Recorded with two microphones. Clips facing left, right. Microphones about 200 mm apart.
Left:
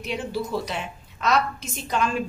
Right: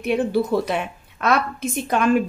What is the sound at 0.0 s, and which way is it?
A woman's voice, 55° right (ahead or behind).